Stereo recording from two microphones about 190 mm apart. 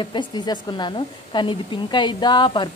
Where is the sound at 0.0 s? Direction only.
25° left (ahead or behind).